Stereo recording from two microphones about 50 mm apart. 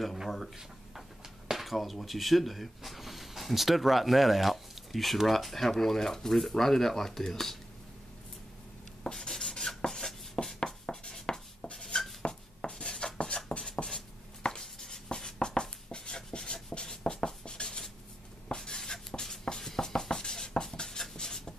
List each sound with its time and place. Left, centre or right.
1.5 s speech: centre
9.0 s a sound: centre
11.1 s writing: centre
11.7 s a sound: centre
13.5 s writing: centre
18.5 s music: centre